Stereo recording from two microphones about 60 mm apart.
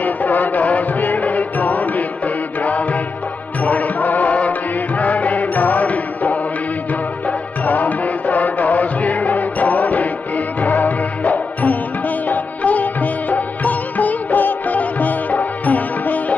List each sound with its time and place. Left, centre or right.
0.0 s music: left